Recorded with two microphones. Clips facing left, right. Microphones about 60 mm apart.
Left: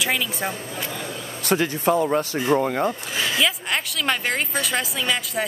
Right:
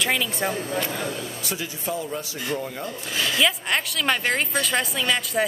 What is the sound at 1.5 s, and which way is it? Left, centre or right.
A man's voice, left.